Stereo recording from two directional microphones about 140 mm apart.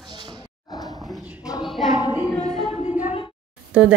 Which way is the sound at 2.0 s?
25° left (ahead or behind).